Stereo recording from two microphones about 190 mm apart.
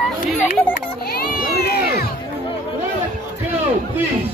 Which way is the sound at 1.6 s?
55° left (ahead or behind).